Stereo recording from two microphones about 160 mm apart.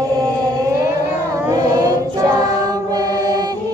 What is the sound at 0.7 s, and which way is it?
Choir, 15° right (ahead or behind).